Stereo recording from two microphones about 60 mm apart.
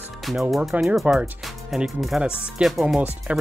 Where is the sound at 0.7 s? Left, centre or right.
Right.